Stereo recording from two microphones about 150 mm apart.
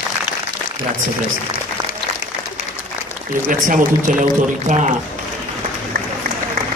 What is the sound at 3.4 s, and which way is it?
Speech, 60° right (ahead or behind).